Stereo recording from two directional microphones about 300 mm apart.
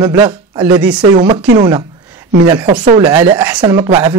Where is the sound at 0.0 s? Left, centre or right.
Centre.